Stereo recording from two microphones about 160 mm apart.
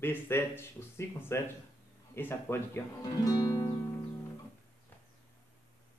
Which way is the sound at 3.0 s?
25° left (ahead or behind).